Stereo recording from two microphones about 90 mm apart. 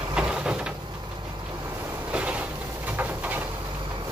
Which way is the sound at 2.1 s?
15° right (ahead or behind).